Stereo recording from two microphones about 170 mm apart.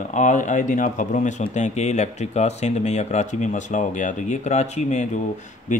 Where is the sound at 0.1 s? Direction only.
45° left (ahead or behind).